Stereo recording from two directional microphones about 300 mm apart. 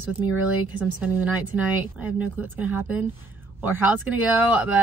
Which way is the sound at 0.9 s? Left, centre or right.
Centre.